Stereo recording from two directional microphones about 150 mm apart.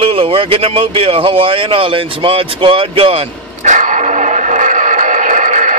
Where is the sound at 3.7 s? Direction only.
60° right (ahead or behind).